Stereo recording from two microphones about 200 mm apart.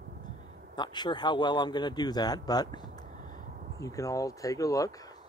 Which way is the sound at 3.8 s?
15° left (ahead or behind).